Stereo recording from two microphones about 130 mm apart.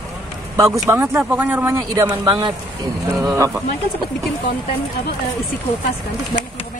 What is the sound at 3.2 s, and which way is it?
Speech, 25° right (ahead or behind).